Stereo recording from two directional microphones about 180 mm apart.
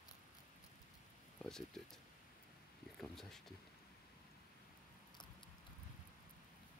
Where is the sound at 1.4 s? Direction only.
5° left (ahead or behind).